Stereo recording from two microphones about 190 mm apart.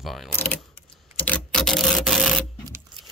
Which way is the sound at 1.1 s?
10° left (ahead or behind).